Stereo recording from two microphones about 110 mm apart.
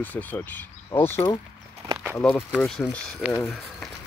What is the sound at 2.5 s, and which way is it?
Speech, 5° left (ahead or behind).